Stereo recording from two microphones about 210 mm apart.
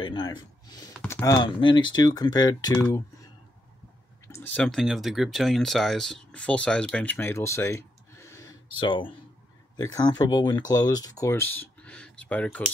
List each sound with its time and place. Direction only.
0.0 s speech: 20° left (ahead or behind)
4.3 s speech: 10° left (ahead or behind)